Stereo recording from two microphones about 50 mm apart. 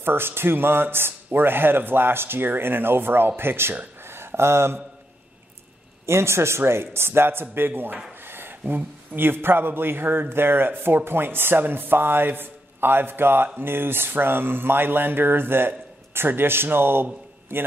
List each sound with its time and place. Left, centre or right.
0.0 s speech: right
4.0 s a sound: right
6.0 s speech: right